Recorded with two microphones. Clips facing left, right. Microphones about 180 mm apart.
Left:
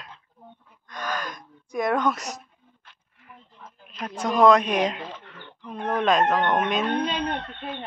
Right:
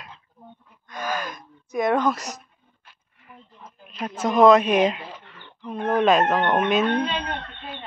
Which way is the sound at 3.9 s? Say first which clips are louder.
Right 3 dB; 5° right (ahead or behind).